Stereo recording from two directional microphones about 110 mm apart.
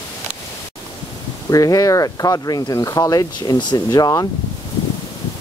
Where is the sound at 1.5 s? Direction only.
30° left (ahead or behind).